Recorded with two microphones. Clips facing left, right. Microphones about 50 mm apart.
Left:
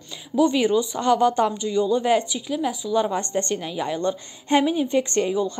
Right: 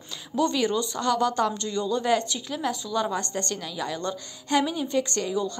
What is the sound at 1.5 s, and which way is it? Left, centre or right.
A woman's voice, centre.